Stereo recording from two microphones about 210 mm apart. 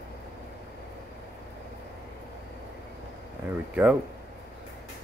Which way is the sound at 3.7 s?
5° right (ahead or behind).